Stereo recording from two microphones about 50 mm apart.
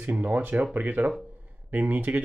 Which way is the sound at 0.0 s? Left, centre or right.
Right.